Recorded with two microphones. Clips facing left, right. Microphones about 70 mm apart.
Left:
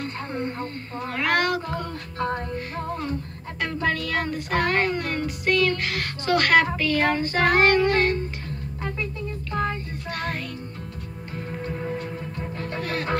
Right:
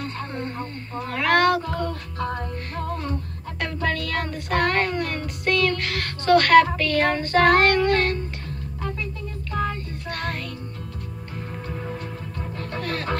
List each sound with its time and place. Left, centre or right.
0.0 s a sound: centre
2.1 s music: left
3.6 s child singing: centre
6.8 s music: centre
11.9 s music: centre